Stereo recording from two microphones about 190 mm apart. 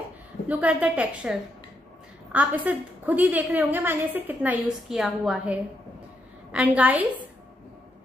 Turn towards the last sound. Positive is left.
turn(degrees=-10)  # may be behind; listen again after turning